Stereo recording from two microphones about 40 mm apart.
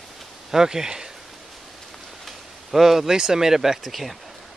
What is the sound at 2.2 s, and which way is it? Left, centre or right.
Speech, centre.